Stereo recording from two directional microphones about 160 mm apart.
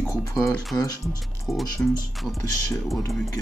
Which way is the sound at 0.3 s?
15° left (ahead or behind).